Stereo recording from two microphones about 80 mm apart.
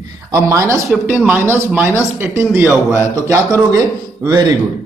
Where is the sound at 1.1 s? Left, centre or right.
Right.